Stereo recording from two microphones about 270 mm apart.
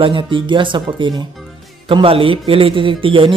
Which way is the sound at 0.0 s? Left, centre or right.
Centre.